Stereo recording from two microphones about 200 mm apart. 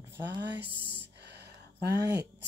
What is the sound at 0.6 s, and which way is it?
Music, 55° right (ahead or behind).